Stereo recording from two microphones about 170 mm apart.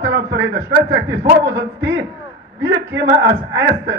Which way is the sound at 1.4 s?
90° right.